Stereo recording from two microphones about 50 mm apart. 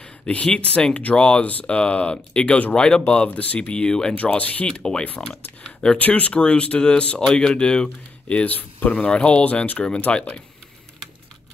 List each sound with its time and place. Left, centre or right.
0.0 s speech: left
1.4 s speech: left
3.3 s speech: left
3.7 s speech: centre
4.1 s speech: left
4.6 s speech: centre
5.3 s a sound: centre
5.9 s speech: left
8.5 s speech: left